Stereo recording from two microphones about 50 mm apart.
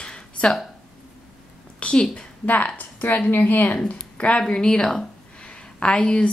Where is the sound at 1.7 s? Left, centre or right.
Centre.